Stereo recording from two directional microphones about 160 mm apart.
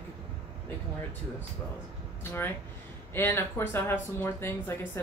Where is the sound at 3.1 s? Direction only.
15° left (ahead or behind).